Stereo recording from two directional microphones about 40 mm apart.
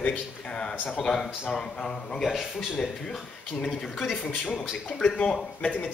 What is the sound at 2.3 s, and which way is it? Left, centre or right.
Speech, centre.